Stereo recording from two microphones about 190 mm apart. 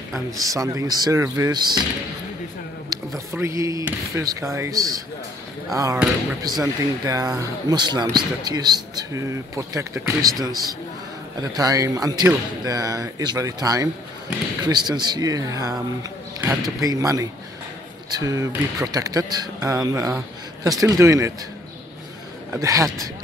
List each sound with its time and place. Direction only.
0.1 s speech: 15° right (ahead or behind)
2.9 s a sound: 20° right (ahead or behind)
3.3 s speech: 15° right (ahead or behind)
11.5 s speech: 20° right (ahead or behind)
22.5 s speech: 15° right (ahead or behind)